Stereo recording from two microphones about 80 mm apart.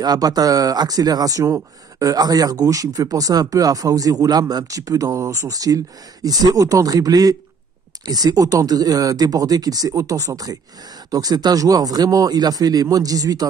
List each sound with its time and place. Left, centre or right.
0.0 s speech: right